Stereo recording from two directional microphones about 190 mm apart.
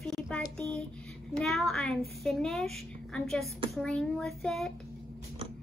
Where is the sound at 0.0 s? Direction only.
5° left (ahead or behind).